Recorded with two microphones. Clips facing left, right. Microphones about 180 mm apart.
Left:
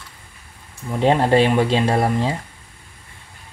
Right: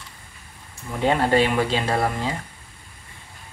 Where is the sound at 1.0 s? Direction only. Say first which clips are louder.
Left 4 dB; 30° left (ahead or behind).